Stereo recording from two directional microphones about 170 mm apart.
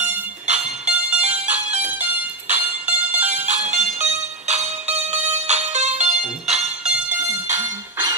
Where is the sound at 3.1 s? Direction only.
45° right (ahead or behind).